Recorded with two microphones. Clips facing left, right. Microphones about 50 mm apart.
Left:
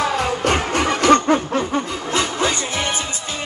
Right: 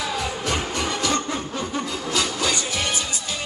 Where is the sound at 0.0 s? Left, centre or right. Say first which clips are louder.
Left 7 dB; left.